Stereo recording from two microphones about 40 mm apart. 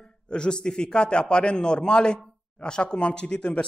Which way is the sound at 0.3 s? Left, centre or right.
Left.